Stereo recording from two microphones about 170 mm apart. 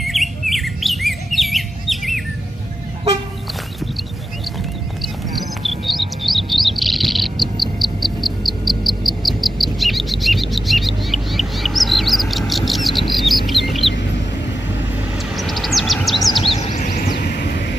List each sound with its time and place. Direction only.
0.0 s squawk: centre (ahead or behind)
6.2 s chirp: centre (ahead or behind)
13.1 s bird: centre (ahead or behind)
13.5 s chicken: centre (ahead or behind)
15.3 s a sound: centre (ahead or behind)
16.4 s a sound: 40° left (ahead or behind)
17.2 s vehicle: 85° left